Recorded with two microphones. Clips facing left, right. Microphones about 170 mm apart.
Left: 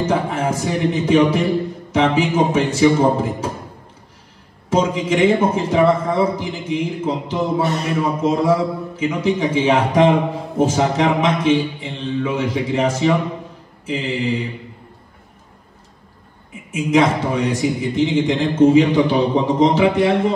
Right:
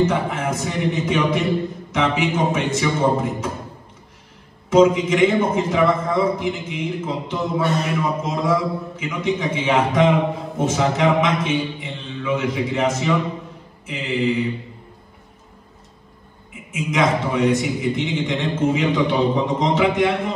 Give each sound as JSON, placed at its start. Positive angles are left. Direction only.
{"t": 0.0, "sound": "a man's voice", "side_deg": 30}
{"t": 4.6, "sound": "a man's voice", "side_deg": 35}
{"t": 16.7, "sound": "a man's voice", "side_deg": 35}